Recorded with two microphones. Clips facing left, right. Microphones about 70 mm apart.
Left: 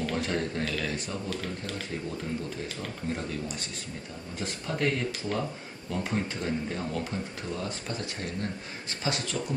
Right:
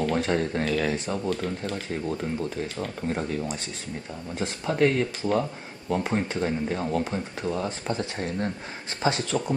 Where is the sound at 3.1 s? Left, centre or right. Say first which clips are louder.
Right 4 dB; right.